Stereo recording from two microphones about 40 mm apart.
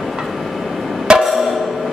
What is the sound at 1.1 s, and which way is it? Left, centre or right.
Music, right.